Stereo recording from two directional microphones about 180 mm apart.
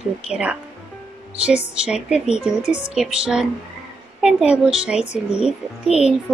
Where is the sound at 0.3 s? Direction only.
5° right (ahead or behind).